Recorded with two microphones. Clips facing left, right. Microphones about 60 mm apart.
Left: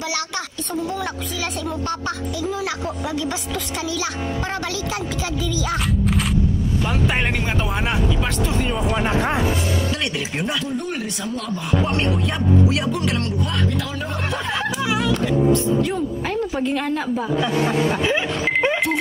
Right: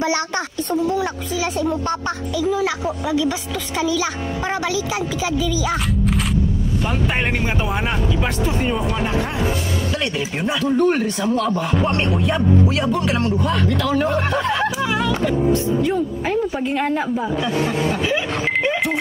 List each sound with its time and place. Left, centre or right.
0.7 s a woman's voice: centre
1.9 s a child's voice: right
3.1 s a woman's voice: centre
7.6 s speech: centre
10.1 s speech: centre
10.6 s a man's voice: right
11.8 s speech: centre
13.7 s speech: right
14.1 s a woman's voice: centre
17.6 s speech: centre
18.6 s music: centre